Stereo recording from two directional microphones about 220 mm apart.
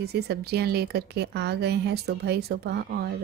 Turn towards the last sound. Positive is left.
turn(degrees=-45)  # may be behind; listen again after turning